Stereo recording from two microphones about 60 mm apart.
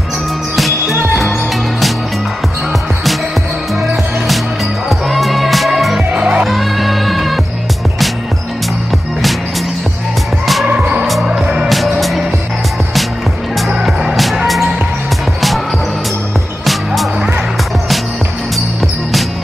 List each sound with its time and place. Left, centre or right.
0.6 s music: centre
4.8 s music: centre
6.1 s music: centre
6.4 s music: centre
10.4 s music: centre
10.8 s music: centre
13.8 s music: centre
16.6 s music: centre